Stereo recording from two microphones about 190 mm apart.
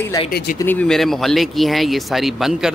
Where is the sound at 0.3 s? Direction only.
55° left (ahead or behind).